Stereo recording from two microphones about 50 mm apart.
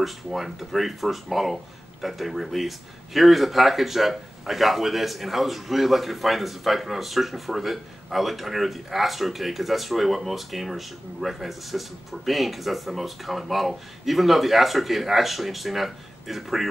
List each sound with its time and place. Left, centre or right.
0.0 s speech: centre